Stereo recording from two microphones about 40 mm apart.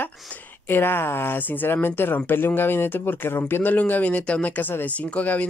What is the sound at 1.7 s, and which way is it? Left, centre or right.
Speech, left.